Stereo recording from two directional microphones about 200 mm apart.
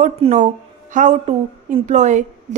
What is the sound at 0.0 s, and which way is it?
A woman's voice, 35° right (ahead or behind).